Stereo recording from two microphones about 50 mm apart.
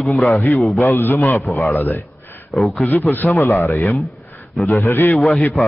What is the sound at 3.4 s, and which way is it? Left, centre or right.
Speech, left.